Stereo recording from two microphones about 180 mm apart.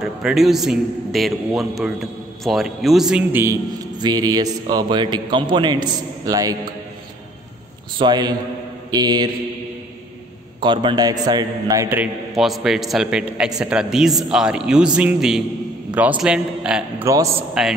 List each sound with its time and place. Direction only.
0.0 s a man's voice: centre (ahead or behind)
4.0 s a man's voice: 20° right (ahead or behind)
8.0 s a man's voice: 25° right (ahead or behind)
10.6 s a man's voice: 25° right (ahead or behind)
12.4 s a man's voice: centre (ahead or behind)